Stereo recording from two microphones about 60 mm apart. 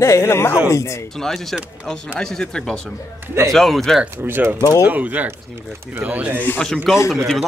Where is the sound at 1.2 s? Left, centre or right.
Centre.